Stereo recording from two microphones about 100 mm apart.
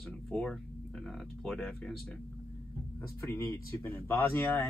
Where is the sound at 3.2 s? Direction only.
25° left (ahead or behind).